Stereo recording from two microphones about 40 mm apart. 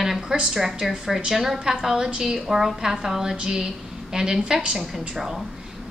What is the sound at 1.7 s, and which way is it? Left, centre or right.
A woman's voice, centre.